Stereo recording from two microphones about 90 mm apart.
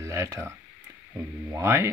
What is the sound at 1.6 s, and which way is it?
Speech, 30° right (ahead or behind).